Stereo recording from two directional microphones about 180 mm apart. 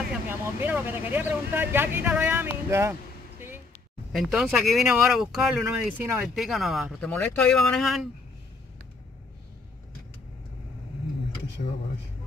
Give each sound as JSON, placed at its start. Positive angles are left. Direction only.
{"t": 0.3, "sound": "speech", "side_deg": -10}
{"t": 4.1, "sound": "speech", "side_deg": 0}
{"t": 11.6, "sound": "speech", "side_deg": 45}